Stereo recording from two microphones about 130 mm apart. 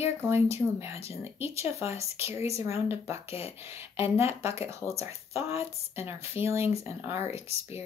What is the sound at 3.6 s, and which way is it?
Speech, 20° right (ahead or behind).